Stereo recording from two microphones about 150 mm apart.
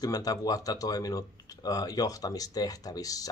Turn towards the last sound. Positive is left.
turn(degrees=25)  # may be behind; listen again after turning